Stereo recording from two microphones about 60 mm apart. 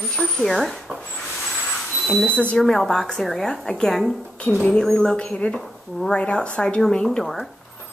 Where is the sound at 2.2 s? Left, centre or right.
Left.